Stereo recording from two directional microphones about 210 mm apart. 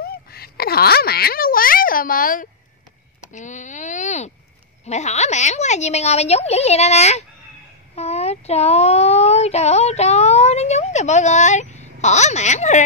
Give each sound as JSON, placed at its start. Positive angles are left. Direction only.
{"t": 0.0, "sound": "a woman's voice", "side_deg": 45}